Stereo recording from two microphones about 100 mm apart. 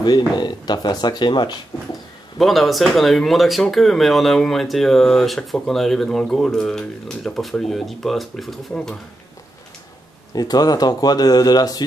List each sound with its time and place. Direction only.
0.4 s speech: 45° left (ahead or behind)
2.3 s speech: centre (ahead or behind)
10.3 s speech: 40° left (ahead or behind)